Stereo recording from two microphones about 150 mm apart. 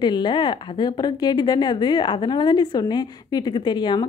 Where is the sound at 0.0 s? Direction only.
30° left (ahead or behind).